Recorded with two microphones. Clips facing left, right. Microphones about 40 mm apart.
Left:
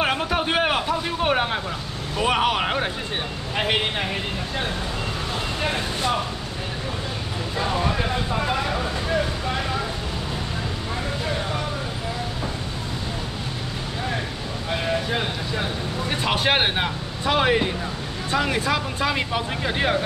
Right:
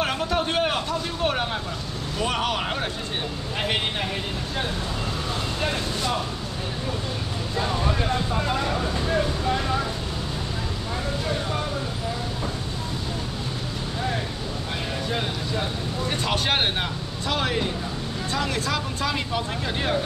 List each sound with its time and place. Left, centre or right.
0.0 s vehicle: left
2.1 s speech: centre
5.6 s speech: left
7.7 s speech: centre
14.9 s speech: left